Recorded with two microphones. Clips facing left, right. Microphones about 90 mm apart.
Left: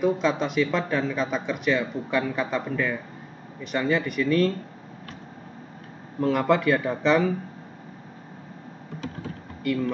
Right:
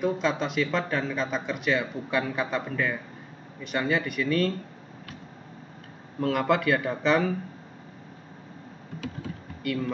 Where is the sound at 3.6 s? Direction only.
Centre (ahead or behind).